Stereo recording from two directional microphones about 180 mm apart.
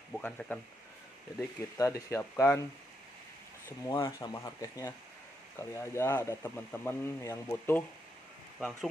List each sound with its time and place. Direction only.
0.1 s speech: 5° left (ahead or behind)
1.8 s speech: 15° left (ahead or behind)
3.6 s speech: 15° left (ahead or behind)